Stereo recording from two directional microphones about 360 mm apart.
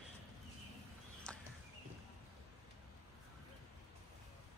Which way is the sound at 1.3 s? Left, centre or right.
Centre.